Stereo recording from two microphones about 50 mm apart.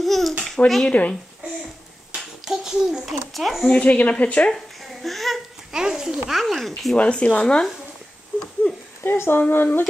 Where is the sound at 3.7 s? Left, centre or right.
Left.